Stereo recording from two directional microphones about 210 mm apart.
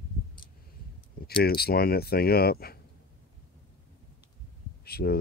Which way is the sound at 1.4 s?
45° left (ahead or behind).